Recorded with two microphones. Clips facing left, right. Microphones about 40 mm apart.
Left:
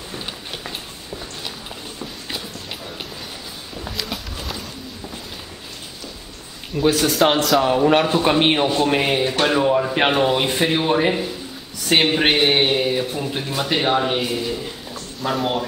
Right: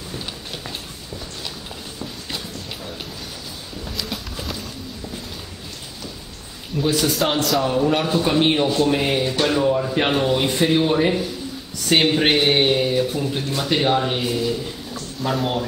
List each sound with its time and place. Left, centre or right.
0.1 s a sound: centre
4.0 s run: centre
6.7 s speech: centre
7.6 s a man's voice: left; by 15.5 s centre